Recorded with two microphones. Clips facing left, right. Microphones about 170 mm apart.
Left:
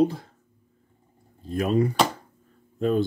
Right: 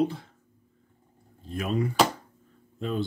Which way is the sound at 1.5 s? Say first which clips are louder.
Left 6 dB; 40° left (ahead or behind).